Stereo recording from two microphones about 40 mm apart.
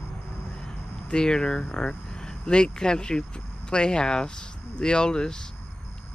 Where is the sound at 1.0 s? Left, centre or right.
Centre.